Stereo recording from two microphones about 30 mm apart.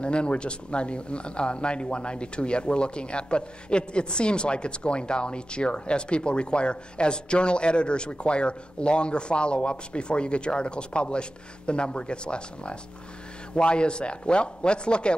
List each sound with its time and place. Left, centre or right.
0.0 s speech: left